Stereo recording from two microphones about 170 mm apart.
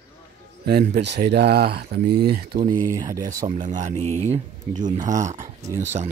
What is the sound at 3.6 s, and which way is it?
Speech, 45° right (ahead or behind).